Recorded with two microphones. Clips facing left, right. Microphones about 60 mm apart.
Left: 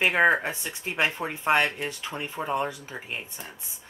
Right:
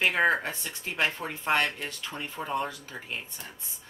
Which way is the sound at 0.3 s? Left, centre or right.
Centre.